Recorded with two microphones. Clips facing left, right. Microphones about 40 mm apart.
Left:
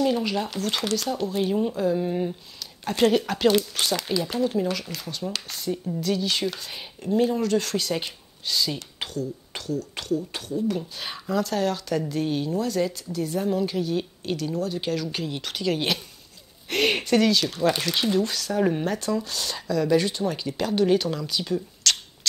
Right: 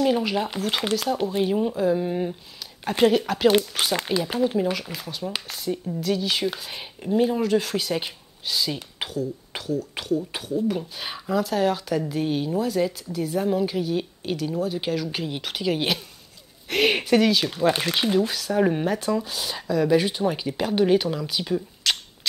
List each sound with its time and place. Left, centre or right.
0.0 s speech: centre
3.1 s speech: centre
3.5 s speech: right